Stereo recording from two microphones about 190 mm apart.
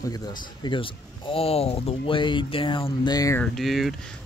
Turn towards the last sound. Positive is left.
turn(degrees=0)  # may be behind; listen again after turning